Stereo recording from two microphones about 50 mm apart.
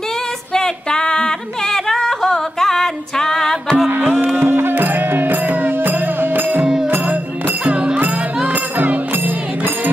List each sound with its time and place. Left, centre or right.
0.6 s singing: centre
3.9 s music: right
7.6 s music: right